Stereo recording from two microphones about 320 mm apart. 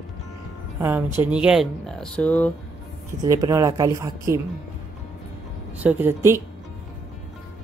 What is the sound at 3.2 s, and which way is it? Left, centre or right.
Speech, centre.